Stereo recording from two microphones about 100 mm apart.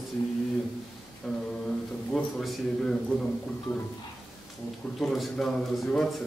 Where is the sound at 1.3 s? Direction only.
5° left (ahead or behind).